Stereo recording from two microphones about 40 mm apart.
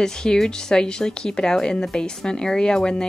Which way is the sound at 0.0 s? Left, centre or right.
Centre.